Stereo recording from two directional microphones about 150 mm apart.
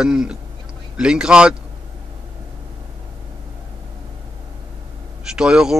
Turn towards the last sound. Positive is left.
turn(degrees=-5)  # may be behind; listen again after turning